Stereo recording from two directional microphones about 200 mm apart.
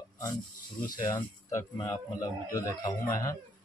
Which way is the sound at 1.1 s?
15° left (ahead or behind).